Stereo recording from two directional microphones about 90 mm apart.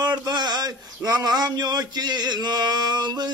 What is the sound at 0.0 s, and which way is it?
Speech, 50° right (ahead or behind).